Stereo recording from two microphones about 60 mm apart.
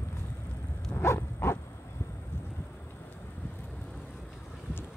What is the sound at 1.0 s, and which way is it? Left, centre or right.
Bow-wow, left.